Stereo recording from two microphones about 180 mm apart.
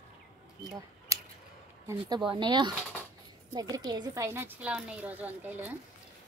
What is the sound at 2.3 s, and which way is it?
A woman's voice, 25° right (ahead or behind).